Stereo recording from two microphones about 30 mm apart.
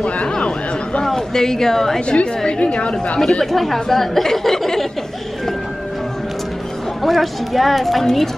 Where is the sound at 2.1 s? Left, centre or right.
Left.